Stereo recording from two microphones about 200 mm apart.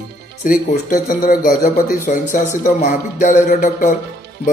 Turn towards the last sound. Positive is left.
turn(degrees=40)  # may be behind; listen again after turning